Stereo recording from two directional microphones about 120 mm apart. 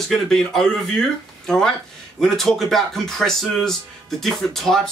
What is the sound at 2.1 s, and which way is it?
Speech, 5° left (ahead or behind).